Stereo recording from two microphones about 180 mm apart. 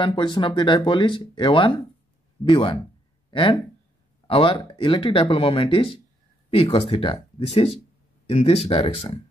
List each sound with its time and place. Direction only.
0.0 s speech: 25° left (ahead or behind)